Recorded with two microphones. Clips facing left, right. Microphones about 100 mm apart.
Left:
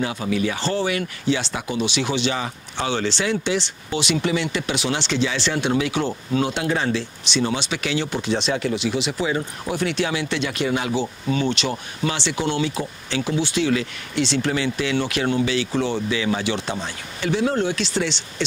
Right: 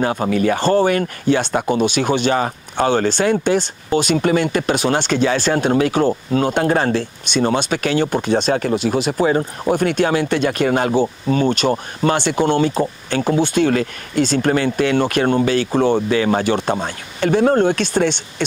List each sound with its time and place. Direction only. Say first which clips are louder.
0.0 s speech: right 6 dB; 45° right (ahead or behind)